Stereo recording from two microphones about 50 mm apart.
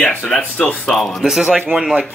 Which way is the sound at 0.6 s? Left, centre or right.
Centre.